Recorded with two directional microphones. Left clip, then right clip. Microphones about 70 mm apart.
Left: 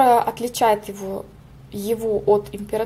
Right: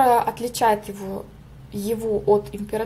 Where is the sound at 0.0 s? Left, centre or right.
Left.